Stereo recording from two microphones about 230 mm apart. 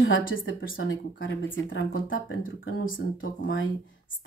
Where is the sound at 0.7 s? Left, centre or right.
Left.